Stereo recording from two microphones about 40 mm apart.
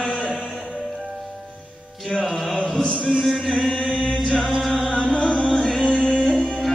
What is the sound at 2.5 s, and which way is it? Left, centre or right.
Chant, centre.